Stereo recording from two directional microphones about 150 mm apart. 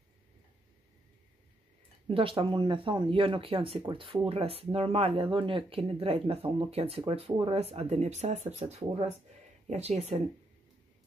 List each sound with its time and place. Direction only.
2.0 s speech: 40° right (ahead or behind)